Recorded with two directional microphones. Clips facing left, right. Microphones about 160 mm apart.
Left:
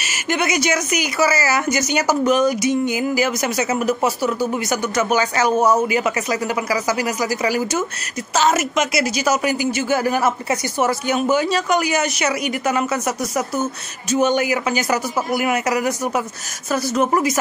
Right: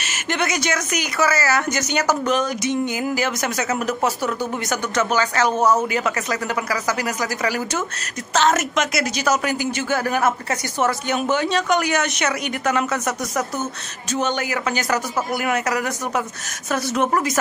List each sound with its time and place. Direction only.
0.0 s a woman's voice: 10° left (ahead or behind)
14.1 s a woman's voice: 10° left (ahead or behind)